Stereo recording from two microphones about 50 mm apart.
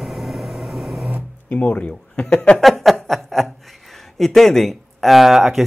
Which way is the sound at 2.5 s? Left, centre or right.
Centre.